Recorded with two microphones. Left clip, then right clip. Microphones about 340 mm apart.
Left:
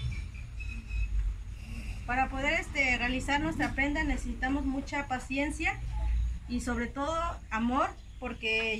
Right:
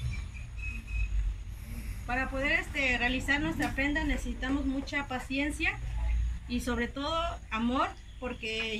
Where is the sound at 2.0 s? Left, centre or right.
Centre.